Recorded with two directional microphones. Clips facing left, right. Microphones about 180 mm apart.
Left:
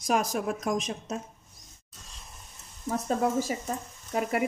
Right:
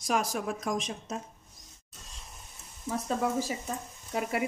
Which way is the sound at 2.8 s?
50° left (ahead or behind).